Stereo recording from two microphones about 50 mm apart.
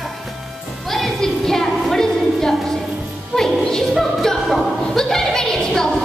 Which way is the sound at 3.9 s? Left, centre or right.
Centre.